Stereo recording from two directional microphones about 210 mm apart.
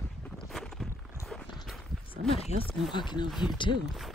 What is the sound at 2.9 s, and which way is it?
Speech, 20° left (ahead or behind).